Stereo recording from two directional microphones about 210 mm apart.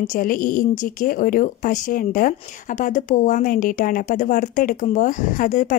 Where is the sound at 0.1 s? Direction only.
40° left (ahead or behind).